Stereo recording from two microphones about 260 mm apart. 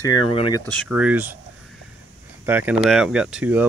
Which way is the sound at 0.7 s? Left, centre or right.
Centre.